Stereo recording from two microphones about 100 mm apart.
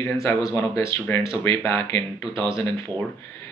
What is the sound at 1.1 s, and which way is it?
Speech, 15° left (ahead or behind).